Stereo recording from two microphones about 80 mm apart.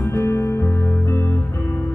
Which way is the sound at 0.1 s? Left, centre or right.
Left.